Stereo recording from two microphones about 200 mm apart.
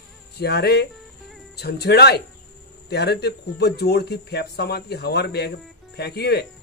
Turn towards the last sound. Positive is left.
turn(degrees=55)  # may be behind; listen again after turning